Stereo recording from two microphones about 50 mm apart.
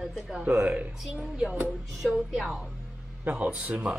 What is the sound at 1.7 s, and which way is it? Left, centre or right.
A woman's voice, centre.